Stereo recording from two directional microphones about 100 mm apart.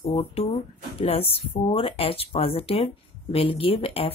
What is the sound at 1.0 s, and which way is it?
Speech, 80° left.